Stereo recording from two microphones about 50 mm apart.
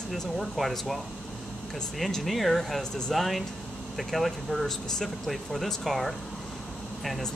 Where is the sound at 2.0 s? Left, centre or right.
Centre.